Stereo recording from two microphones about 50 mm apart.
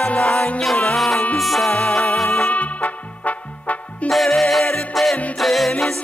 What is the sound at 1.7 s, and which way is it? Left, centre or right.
Music, centre.